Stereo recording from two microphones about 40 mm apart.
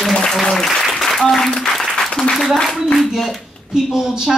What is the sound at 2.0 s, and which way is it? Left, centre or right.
Applause, centre.